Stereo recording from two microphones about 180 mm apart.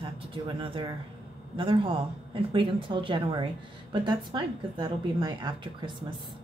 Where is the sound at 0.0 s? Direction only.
30° right (ahead or behind).